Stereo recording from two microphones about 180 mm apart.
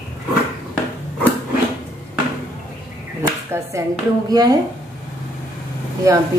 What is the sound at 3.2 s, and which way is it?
Speech, 15° right (ahead or behind).